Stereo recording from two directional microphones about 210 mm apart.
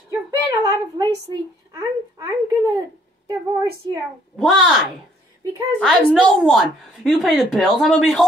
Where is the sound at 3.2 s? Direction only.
15° right (ahead or behind).